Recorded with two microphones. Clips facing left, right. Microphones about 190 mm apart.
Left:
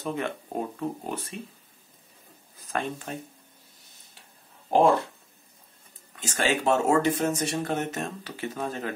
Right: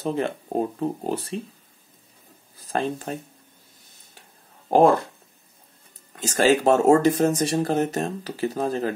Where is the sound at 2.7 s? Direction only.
35° right (ahead or behind).